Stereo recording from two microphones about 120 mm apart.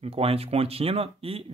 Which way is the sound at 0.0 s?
55° right (ahead or behind).